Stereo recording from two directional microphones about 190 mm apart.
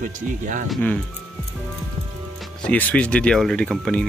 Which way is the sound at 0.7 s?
5° left (ahead or behind).